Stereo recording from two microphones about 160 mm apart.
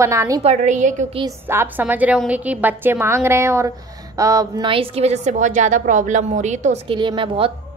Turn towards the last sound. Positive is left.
turn(degrees=-30)  # may be behind; listen again after turning